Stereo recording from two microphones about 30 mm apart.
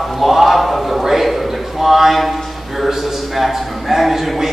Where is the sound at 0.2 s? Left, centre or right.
Centre.